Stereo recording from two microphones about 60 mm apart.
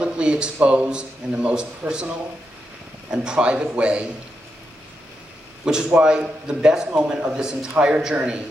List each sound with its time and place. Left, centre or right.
0.0 s speech: centre
5.9 s speech: centre